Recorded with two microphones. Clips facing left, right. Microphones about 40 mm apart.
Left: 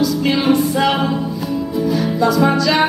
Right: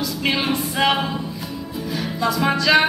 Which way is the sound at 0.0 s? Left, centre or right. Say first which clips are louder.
Left 6 dB; right.